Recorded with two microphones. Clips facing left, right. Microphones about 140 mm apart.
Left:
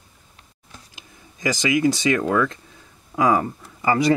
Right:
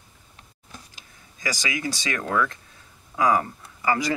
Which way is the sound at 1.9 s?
20° left (ahead or behind).